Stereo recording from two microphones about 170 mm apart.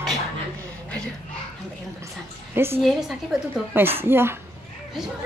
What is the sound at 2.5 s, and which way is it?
Speech, 15° right (ahead or behind).